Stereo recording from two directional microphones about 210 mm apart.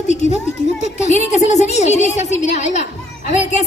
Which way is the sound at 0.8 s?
35° left (ahead or behind).